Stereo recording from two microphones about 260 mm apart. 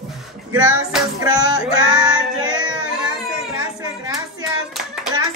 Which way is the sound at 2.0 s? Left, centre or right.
Centre.